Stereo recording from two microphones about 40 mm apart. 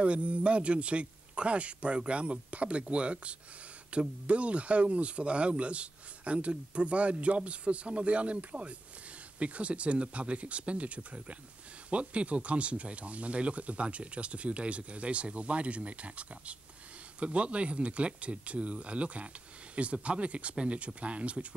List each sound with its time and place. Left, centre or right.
0.0 s speech: right